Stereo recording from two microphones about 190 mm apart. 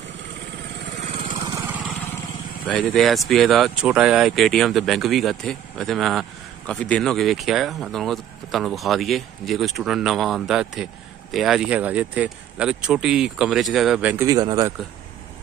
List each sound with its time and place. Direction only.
0.9 s vehicle: 30° right (ahead or behind)
1.5 s vehicle: 10° right (ahead or behind)
2.7 s speech: centre (ahead or behind); by 14.7 s 20° right (ahead or behind)